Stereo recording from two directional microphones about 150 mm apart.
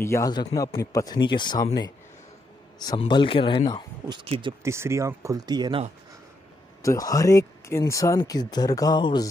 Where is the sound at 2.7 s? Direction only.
30° left (ahead or behind).